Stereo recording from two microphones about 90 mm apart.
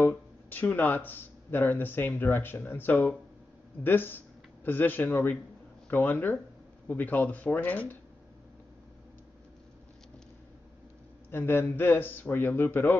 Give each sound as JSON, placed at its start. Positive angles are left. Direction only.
{"t": 0.0, "sound": "speech", "side_deg": 20}
{"t": 11.2, "sound": "speech", "side_deg": 25}